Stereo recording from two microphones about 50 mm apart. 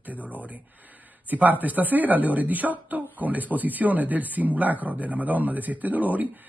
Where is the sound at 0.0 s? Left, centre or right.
Right.